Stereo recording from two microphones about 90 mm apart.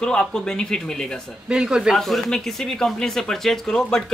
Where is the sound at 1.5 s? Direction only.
10° right (ahead or behind).